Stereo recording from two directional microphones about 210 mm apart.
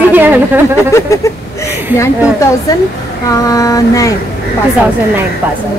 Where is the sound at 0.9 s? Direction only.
15° left (ahead or behind).